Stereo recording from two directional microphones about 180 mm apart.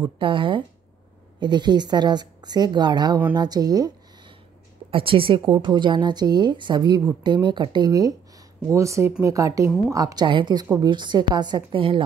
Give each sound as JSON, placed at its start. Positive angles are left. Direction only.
{"t": 0.0, "sound": "a woman's voice", "side_deg": -25}
{"t": 4.9, "sound": "a woman's voice", "side_deg": -30}